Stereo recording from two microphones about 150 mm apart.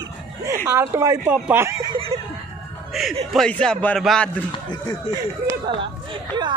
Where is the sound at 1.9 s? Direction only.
40° right (ahead or behind).